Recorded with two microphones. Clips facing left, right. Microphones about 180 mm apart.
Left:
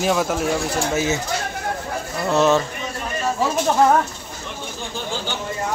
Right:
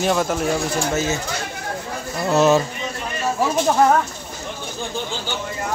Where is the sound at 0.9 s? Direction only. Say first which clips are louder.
Left 3 dB; 20° left (ahead or behind).